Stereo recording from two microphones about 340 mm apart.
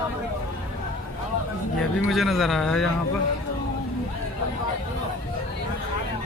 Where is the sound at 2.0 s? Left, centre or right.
Centre.